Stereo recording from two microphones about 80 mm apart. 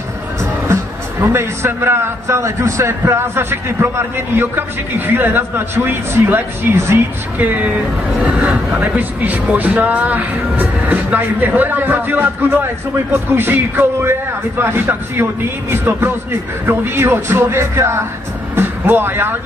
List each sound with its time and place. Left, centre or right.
1.2 s a man's voice: right
18.5 s music: right